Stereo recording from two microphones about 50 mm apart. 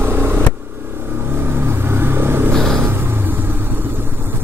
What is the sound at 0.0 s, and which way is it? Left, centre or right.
Vehicle, right.